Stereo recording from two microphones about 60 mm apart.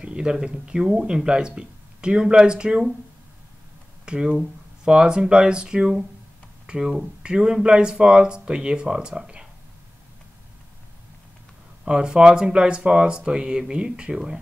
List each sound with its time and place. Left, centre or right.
0.0 s speech: centre
4.0 s speech: centre
11.8 s speech: centre